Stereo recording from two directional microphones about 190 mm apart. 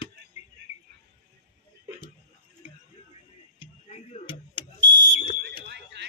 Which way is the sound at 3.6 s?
35° left (ahead or behind).